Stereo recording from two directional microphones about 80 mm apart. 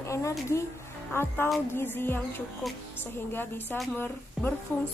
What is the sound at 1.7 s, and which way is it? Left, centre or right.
A woman's voice, left.